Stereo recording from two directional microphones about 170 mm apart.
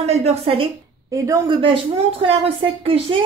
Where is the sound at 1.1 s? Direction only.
20° right (ahead or behind).